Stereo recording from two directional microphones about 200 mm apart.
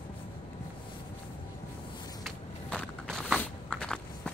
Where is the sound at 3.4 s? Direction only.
5° left (ahead or behind).